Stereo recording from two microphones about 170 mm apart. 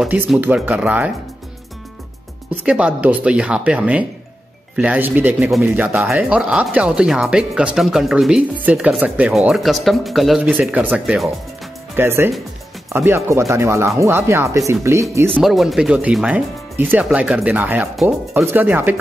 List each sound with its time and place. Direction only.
0.0 s speech: 5° right (ahead or behind)
2.6 s speech: 5° right (ahead or behind)
12.0 s speech: 15° right (ahead or behind)
15.3 s speech: centre (ahead or behind)